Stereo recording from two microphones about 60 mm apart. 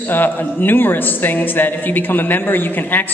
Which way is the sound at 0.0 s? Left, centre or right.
Left.